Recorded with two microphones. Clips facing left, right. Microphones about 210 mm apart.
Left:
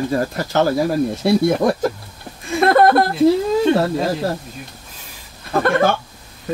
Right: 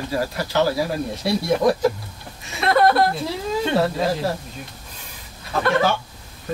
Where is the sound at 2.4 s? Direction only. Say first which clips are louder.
Left 4 dB; 50° left (ahead or behind).